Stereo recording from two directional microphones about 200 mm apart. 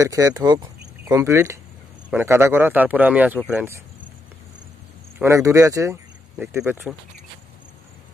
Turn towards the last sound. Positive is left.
turn(degrees=-10)  # may be behind; listen again after turning